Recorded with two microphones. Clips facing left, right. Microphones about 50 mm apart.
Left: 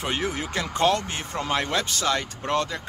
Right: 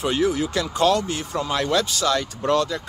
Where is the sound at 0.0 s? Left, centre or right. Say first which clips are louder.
Right 6 dB; left.